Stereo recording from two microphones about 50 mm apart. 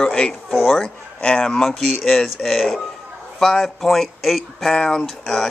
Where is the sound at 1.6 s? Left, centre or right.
Centre.